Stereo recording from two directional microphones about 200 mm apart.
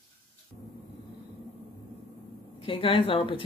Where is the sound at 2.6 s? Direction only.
25° left (ahead or behind).